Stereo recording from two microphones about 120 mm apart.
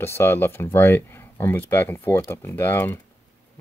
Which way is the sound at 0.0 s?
20° left (ahead or behind).